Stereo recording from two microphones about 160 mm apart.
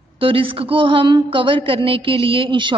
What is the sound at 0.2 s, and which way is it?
A woman's voice, 35° right (ahead or behind).